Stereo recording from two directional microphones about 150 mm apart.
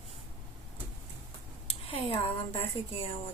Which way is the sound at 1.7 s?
40° left (ahead or behind).